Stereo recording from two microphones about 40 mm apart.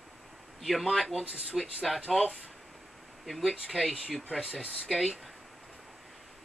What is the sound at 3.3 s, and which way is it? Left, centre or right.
Speech, centre.